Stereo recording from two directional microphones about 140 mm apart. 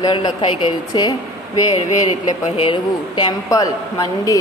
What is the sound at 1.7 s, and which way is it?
Speech, 60° left (ahead or behind).